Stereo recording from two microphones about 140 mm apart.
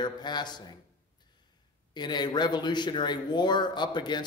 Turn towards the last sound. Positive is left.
turn(degrees=30)  # may be behind; listen again after turning